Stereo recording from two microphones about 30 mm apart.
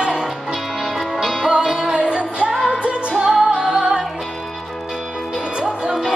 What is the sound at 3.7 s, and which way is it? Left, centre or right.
Music, centre.